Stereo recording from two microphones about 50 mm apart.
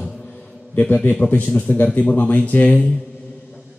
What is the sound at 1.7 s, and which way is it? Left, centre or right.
Speech, left.